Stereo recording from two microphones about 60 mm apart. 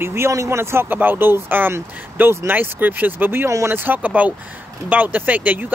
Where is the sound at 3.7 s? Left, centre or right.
Right.